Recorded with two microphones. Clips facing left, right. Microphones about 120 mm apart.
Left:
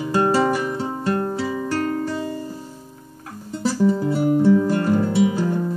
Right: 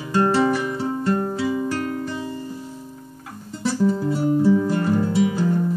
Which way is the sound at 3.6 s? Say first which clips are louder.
Left 1 dB; 5° left (ahead or behind).